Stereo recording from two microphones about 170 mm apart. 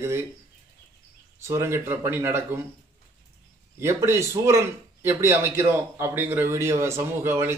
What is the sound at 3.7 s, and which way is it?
Speech, 15° right (ahead or behind).